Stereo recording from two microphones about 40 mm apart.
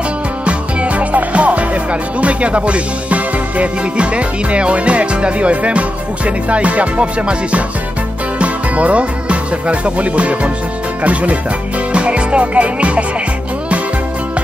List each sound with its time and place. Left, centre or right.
0.5 s speech: right
11.9 s music: right